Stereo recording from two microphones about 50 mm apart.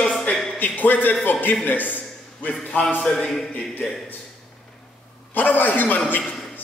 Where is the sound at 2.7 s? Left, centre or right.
Centre.